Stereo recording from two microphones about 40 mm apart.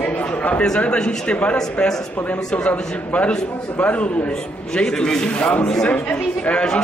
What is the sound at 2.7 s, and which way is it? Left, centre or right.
Speech, left.